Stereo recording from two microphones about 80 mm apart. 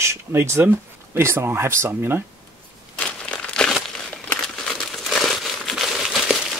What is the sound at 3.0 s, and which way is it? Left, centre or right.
Crumpling, centre.